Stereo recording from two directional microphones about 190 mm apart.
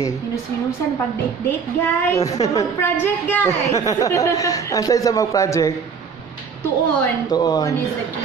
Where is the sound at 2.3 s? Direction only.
35° left (ahead or behind).